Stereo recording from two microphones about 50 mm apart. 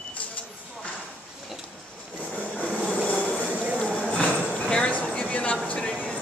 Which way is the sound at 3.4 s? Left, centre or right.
Right.